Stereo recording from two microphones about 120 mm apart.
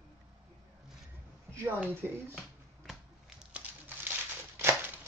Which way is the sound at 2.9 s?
5° right (ahead or behind).